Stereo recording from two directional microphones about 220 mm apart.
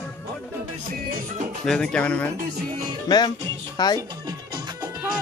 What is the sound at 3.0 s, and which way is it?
Speech, 20° left (ahead or behind).